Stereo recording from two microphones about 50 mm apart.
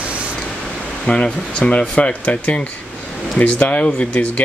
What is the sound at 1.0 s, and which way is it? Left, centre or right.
Speech, centre.